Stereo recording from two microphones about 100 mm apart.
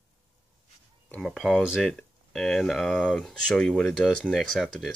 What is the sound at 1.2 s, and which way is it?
Speech, centre (ahead or behind).